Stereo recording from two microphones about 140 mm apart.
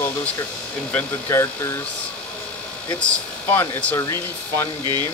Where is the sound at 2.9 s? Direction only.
10° left (ahead or behind).